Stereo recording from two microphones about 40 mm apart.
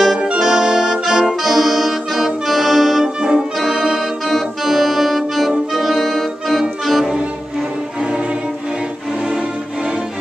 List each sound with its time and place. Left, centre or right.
0.4 s accordion: centre
3.2 s brass instrument: right
3.6 s music: centre